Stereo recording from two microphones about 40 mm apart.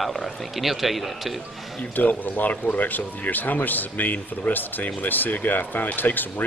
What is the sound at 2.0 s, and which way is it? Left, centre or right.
Speech, left.